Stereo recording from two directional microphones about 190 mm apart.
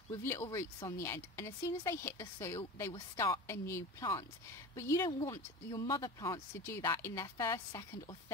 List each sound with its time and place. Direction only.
0.2 s speech: 15° left (ahead or behind)
2.9 s speech: 25° left (ahead or behind)
3.4 s speech: 15° left (ahead or behind)